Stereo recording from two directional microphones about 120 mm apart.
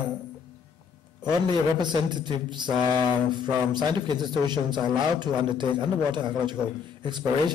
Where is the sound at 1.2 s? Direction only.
40° right (ahead or behind).